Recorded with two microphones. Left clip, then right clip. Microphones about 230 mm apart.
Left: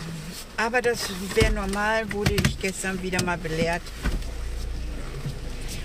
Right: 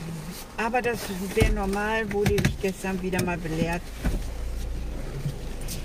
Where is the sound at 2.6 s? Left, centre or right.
Centre.